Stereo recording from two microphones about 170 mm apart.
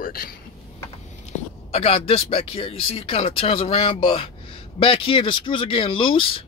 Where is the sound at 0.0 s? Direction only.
60° left (ahead or behind).